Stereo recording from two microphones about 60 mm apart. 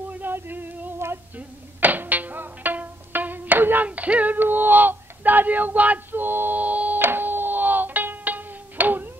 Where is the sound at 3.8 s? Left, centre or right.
Right.